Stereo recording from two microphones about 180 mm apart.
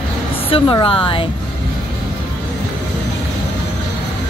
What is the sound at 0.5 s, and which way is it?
Speech, 25° left (ahead or behind).